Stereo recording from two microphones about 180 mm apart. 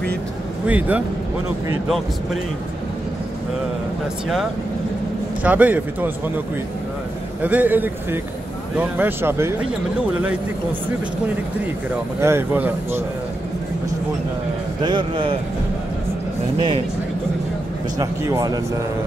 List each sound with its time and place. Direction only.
0.7 s a man's voice: 10° right (ahead or behind)
5.4 s a man's voice: 10° right (ahead or behind)
7.4 s a man's voice: 10° right (ahead or behind)
12.2 s a man's voice: 15° right (ahead or behind)
14.8 s speech: 25° right (ahead or behind)
16.5 s speech: 30° right (ahead or behind)
17.9 s speech: 20° right (ahead or behind)